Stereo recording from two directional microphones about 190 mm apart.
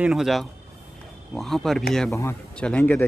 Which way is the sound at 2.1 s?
15° left (ahead or behind).